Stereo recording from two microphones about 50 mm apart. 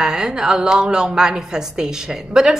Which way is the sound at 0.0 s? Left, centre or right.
Centre.